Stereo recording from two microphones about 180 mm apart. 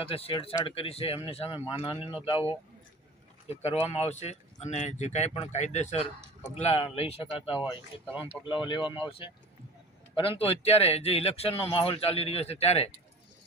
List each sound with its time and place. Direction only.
0.0 s speech: 30° left (ahead or behind)
3.4 s speech: 35° left (ahead or behind)